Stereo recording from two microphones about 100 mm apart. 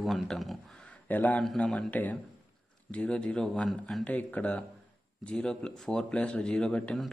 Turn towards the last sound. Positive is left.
turn(degrees=5)  # may be behind; listen again after turning